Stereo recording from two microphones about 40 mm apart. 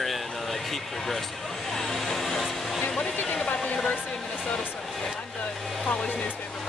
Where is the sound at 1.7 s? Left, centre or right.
Centre.